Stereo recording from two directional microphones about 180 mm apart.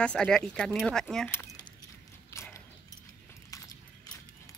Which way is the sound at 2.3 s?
15° left (ahead or behind).